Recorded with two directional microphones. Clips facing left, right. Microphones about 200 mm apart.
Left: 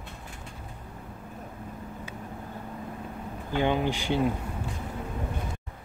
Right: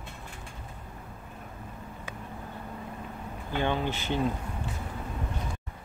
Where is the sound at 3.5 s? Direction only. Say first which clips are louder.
Left 3 dB; 15° left (ahead or behind).